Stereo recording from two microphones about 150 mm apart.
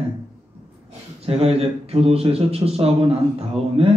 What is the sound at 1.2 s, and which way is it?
A man's voice, 40° right (ahead or behind).